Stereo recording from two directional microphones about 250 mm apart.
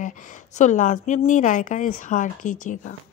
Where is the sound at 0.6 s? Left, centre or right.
Left.